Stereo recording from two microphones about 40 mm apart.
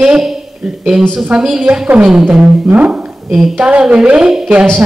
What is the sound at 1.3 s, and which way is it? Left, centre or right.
Speech, centre.